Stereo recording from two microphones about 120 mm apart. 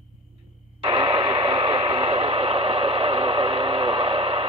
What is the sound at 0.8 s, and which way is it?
Radio, 50° right (ahead or behind).